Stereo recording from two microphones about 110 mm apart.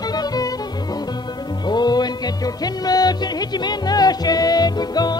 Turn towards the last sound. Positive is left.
turn(degrees=40)  # may be behind; listen again after turning